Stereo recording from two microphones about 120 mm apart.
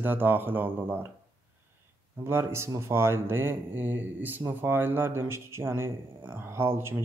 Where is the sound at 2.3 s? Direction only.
20° right (ahead or behind).